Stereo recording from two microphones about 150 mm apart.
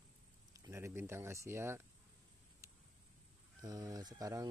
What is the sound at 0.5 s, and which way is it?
Speech, 20° right (ahead or behind).